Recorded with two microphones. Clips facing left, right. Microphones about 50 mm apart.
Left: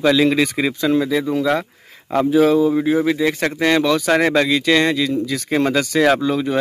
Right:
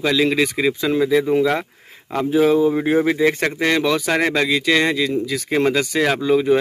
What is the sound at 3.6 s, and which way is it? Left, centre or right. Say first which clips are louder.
Speech: left 3 dB; centre.